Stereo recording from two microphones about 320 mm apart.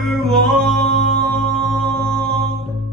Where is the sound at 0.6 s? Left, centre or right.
Right.